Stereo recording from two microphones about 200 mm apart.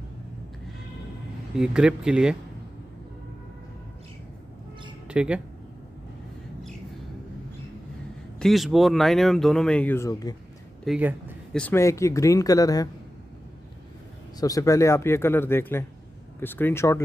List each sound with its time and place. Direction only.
1.5 s speech: 5° right (ahead or behind)
5.0 s speech: 5° right (ahead or behind)
8.4 s speech: centre (ahead or behind); by 10.3 s 15° left (ahead or behind)
10.9 s speech: 10° right (ahead or behind)
11.5 s speech: 10° left (ahead or behind)
14.4 s speech: 15° left (ahead or behind)